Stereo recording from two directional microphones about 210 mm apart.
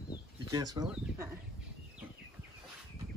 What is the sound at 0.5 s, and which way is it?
Speech, 20° right (ahead or behind).